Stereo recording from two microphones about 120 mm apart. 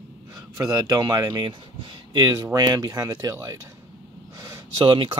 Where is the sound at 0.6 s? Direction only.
30° right (ahead or behind).